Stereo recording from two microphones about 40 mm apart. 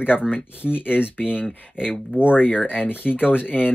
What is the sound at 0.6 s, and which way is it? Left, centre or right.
Speech, left.